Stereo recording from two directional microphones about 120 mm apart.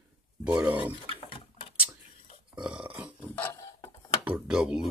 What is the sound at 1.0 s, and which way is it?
Pig, 50° left (ahead or behind).